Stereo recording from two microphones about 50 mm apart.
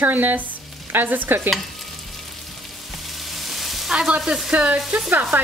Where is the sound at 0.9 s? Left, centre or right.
Right.